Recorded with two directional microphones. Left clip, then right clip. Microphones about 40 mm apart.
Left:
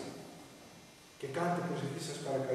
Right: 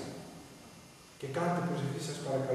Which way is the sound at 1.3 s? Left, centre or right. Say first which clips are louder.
Right 2 dB; centre.